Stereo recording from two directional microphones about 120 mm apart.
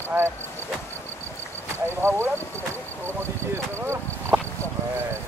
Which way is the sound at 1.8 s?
20° right (ahead or behind).